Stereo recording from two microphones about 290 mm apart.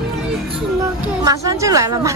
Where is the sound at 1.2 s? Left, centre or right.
Centre.